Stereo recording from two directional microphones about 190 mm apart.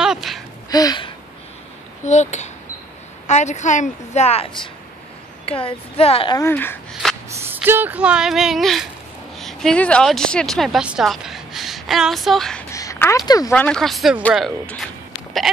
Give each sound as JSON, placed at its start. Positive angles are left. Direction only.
{"t": 0.0, "sound": "a sound", "side_deg": 0}
{"t": 0.7, "sound": "gasp", "side_deg": 20}
{"t": 2.0, "sound": "a woman's voice", "side_deg": 40}
{"t": 6.3, "sound": "speech", "side_deg": 15}
{"t": 7.2, "sound": "speech", "side_deg": -10}
{"t": 12.7, "sound": "a sound", "side_deg": 15}
{"t": 13.5, "sound": "speech", "side_deg": 5}